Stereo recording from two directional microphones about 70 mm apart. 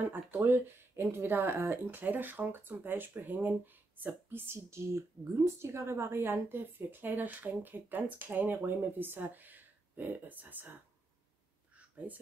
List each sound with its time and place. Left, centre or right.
0.0 s speech: right
12.1 s speech: right